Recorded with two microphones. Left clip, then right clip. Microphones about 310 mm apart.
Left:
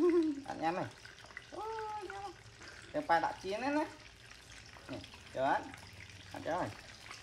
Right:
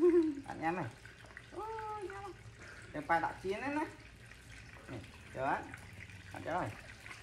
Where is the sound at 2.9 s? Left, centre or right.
Left.